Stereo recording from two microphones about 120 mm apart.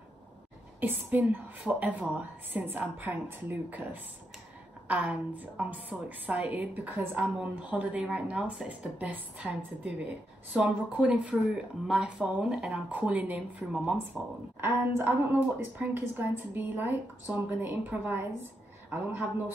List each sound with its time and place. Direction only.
0.7 s a woman's voice: 15° right (ahead or behind)
14.6 s a woman's voice: 20° right (ahead or behind)